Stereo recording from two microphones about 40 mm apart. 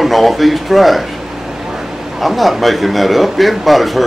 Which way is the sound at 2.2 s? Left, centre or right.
Centre.